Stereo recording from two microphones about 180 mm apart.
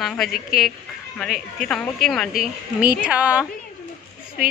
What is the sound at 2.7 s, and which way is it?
Speech, 10° right (ahead or behind).